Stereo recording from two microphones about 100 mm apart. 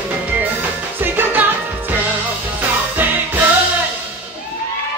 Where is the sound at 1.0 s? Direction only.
20° right (ahead or behind).